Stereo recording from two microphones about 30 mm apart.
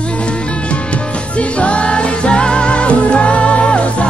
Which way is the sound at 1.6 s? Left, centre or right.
Left.